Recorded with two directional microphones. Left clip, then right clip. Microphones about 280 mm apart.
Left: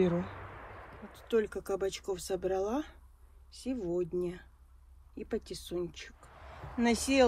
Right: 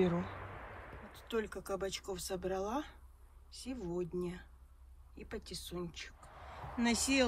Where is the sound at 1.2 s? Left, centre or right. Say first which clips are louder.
Left 8 dB; centre.